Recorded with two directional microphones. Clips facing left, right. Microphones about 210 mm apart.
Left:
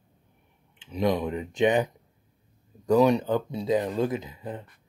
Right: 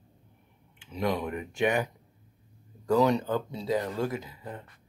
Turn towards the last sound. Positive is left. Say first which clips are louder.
# left 4 dB
turn(degrees=20)  # may be behind; listen again after turning